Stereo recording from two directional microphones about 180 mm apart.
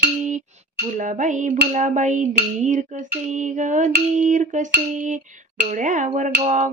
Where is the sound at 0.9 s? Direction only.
45° right (ahead or behind).